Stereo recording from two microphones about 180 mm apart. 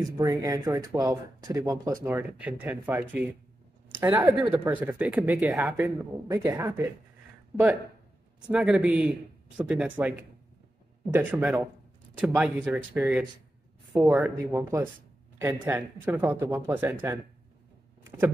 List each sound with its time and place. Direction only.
0.0 s speech: 20° right (ahead or behind)
6.3 s speech: 15° right (ahead or behind)
8.4 s speech: 5° right (ahead or behind)